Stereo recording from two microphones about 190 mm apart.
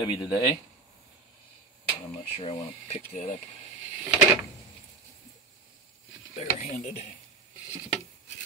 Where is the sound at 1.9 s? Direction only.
30° left (ahead or behind).